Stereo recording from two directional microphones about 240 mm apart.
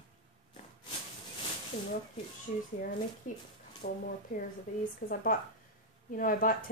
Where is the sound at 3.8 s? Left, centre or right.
Left.